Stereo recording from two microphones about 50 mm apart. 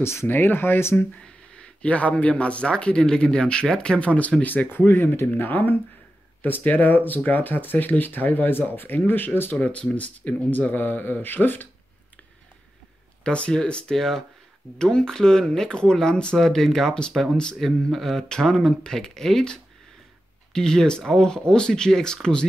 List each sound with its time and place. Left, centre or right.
0.0 s speech: left
0.3 s speech: left
1.2 s speech: left
4.1 s speech: left
5.3 s speech: left
9.6 s speech: left
13.2 s speech: centre
17.1 s speech: centre